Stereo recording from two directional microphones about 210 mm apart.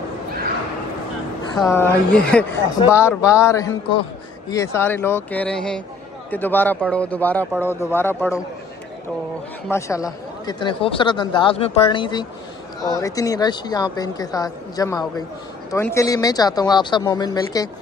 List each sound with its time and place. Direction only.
1.7 s speech: 10° left (ahead or behind)
9.7 s speech: 15° left (ahead or behind)